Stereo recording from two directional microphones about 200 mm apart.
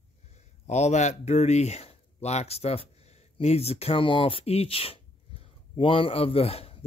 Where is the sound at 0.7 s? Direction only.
35° left (ahead or behind).